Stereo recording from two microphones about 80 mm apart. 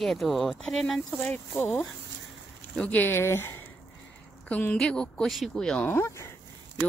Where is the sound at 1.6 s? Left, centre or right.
Left.